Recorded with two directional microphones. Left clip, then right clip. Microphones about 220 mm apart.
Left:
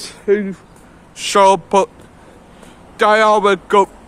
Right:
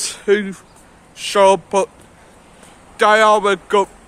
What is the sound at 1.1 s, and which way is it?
Speech, 15° left (ahead or behind).